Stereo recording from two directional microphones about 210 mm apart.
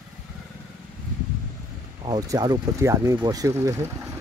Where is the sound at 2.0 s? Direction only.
20° right (ahead or behind).